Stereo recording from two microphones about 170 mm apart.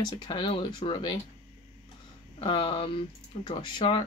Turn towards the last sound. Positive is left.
turn(degrees=30)  # may be behind; listen again after turning